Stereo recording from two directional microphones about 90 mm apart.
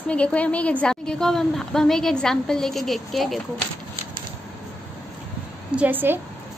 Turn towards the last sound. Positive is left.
turn(degrees=-20)  # may be behind; listen again after turning